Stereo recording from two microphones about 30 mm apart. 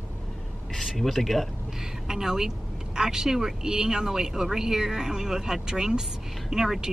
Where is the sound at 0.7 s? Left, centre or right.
Centre.